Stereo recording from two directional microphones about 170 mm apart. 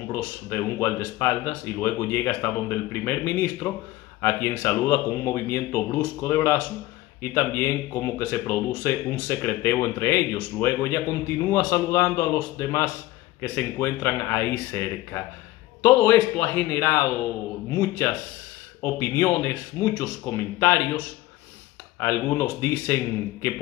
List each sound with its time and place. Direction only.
0.1 s speech: 15° left (ahead or behind)
22.0 s speech: 15° left (ahead or behind)